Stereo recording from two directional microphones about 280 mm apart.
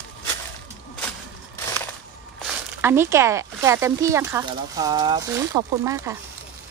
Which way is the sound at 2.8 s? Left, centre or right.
Centre.